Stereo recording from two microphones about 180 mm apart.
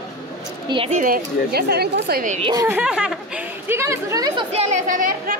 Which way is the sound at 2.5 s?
10° right (ahead or behind).